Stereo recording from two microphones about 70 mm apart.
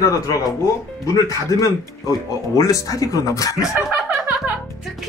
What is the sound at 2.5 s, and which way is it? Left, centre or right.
Speech, left.